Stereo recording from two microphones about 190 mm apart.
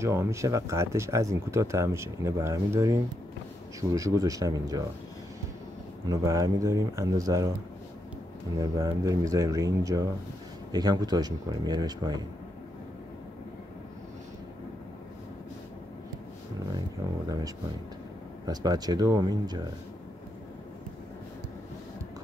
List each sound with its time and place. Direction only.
0.0 s speech: 15° right (ahead or behind)
6.0 s speech: 15° right (ahead or behind)
8.5 s speech: 15° right (ahead or behind)
18.4 s speech: 20° right (ahead or behind)